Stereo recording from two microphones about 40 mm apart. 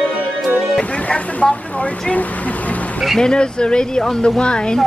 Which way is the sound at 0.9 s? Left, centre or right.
Left.